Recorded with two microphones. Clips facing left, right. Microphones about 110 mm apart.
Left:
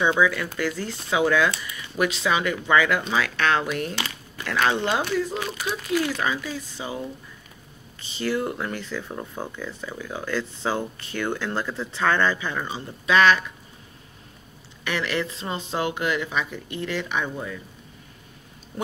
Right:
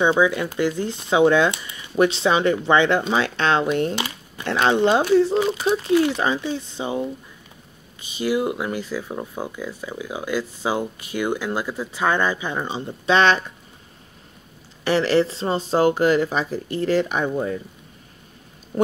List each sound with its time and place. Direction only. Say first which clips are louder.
0.2 s speech: right 3 dB; 20° right (ahead or behind)
8.0 s speech: right 4 dB; 15° right (ahead or behind)
14.9 s speech: right 9 dB; 35° right (ahead or behind)